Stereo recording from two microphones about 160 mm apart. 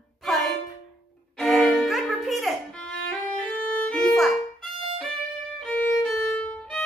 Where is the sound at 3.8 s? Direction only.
5° left (ahead or behind).